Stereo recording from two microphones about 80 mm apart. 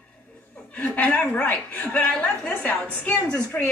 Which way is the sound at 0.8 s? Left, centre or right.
Centre.